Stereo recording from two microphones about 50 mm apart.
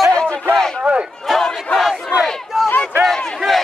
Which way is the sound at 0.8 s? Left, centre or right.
Right.